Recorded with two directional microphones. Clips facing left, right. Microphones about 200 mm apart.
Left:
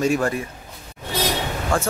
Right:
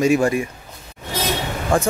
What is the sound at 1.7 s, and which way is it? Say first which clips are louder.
Speech: right 4 dB; 15° right (ahead or behind).